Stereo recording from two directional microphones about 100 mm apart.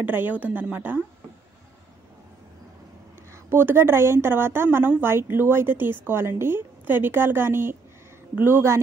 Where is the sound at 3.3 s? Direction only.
25° right (ahead or behind).